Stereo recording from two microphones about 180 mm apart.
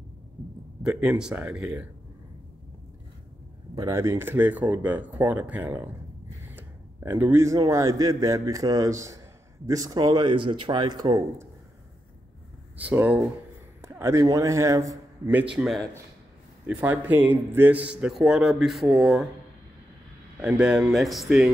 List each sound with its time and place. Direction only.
0.8 s speech: 5° right (ahead or behind)
3.7 s a man's voice: 20° right (ahead or behind)
12.7 s a man's voice: 10° right (ahead or behind)
15.5 s a man's voice: centre (ahead or behind)
20.3 s speech: 5° right (ahead or behind)